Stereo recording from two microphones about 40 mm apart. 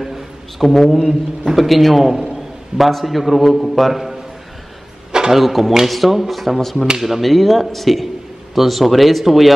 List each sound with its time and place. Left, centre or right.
0.6 s a man's voice: centre
5.1 s a sound: centre
5.4 s a man's voice: centre